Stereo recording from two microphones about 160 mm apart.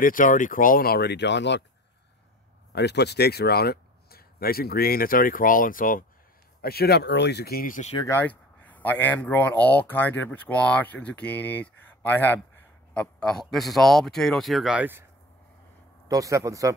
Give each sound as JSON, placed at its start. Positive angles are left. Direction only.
{"t": 0.0, "sound": "speech", "side_deg": 55}
{"t": 2.7, "sound": "speech", "side_deg": 90}
{"t": 6.6, "sound": "speech", "side_deg": 75}
{"t": 8.0, "sound": "a man's voice", "side_deg": 15}
{"t": 16.1, "sound": "speech", "side_deg": -20}